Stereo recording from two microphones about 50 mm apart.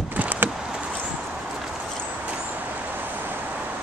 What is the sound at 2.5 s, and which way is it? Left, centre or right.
Vehicle, right.